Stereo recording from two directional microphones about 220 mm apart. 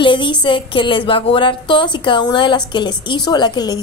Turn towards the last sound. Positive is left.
turn(degrees=20)  # may be behind; listen again after turning